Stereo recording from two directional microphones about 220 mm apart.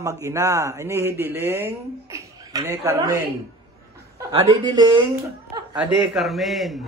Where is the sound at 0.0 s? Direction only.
15° right (ahead or behind).